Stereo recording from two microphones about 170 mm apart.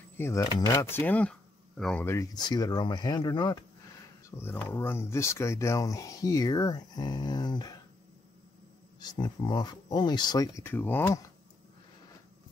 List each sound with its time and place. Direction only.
0.2 s speech: 15° left (ahead or behind)
2.0 s speech: 20° left (ahead or behind)
4.3 s speech: 15° left (ahead or behind)
9.0 s speech: 25° left (ahead or behind)